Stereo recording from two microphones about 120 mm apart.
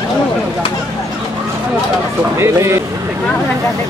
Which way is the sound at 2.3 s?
20° right (ahead or behind).